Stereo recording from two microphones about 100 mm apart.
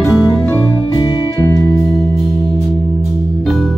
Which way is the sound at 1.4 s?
25° left (ahead or behind).